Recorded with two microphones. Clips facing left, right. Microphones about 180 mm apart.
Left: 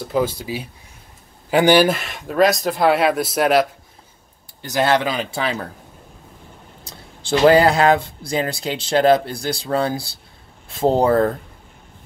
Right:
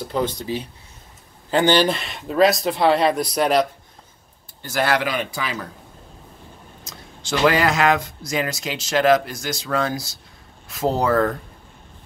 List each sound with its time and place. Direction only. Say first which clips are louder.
0.0 s speech: left 3 dB; 5° left (ahead or behind)
4.6 s speech: left 3 dB; 20° left (ahead or behind)
6.8 s speech: even; 30° left (ahead or behind)